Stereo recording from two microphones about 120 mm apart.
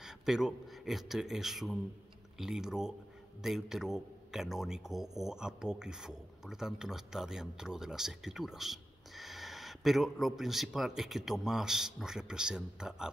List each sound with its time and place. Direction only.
0.0 s speech: 5° right (ahead or behind)